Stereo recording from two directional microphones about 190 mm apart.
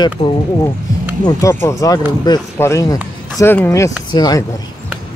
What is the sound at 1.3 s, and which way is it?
Speech, 15° left (ahead or behind).